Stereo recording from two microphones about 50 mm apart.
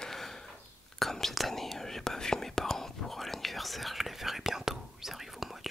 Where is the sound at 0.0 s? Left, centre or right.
Centre.